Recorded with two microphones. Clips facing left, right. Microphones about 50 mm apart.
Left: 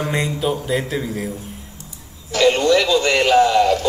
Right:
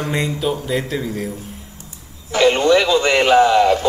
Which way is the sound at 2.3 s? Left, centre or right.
Centre.